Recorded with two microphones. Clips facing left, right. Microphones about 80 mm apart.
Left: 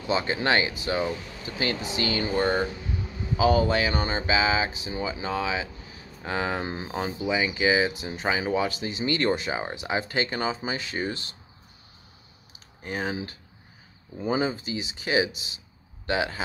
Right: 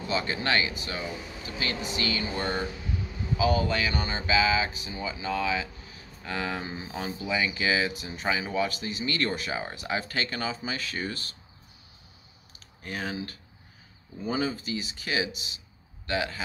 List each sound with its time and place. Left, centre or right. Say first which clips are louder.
0.1 s speech: left 4 dB; left
0.8 s a sound: left 7 dB; left
4.8 s speech: left 3 dB; left
12.5 s speech: left 4 dB; left